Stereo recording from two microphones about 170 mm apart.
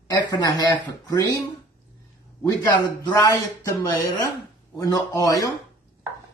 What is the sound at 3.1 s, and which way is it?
Speech, 20° left (ahead or behind).